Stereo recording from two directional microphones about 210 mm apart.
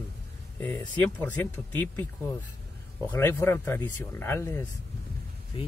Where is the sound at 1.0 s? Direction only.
10° left (ahead or behind).